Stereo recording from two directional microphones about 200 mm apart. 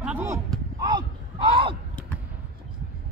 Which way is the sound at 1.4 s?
25° right (ahead or behind).